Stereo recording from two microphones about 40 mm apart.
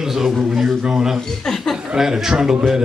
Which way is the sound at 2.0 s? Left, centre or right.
Centre.